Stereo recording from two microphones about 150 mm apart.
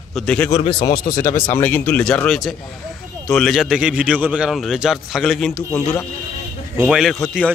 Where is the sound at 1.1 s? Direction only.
15° left (ahead or behind).